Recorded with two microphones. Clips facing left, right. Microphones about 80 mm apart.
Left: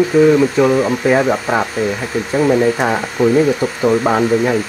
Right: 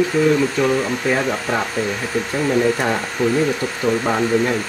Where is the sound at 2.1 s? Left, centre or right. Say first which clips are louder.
Left 5 dB; centre; by 4.6 s left.